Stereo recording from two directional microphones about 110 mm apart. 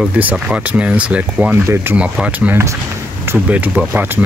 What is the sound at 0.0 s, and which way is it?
Speech, 10° right (ahead or behind).